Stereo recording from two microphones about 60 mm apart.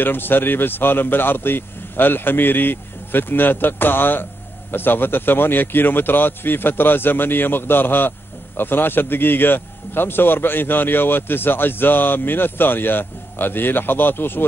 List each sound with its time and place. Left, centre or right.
0.0 s speech: left